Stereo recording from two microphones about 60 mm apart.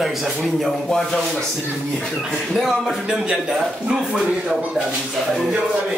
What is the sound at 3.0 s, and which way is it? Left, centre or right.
Speech, centre.